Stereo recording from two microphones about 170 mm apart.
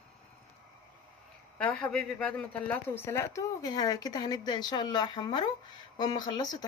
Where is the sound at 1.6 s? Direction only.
5° left (ahead or behind).